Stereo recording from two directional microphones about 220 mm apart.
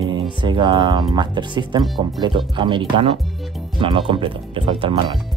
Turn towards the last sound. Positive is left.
turn(degrees=-25)  # may be behind; listen again after turning